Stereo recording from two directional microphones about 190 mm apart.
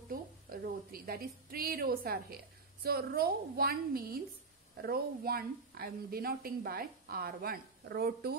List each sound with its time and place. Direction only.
0.1 s a woman's voice: 50° right (ahead or behind)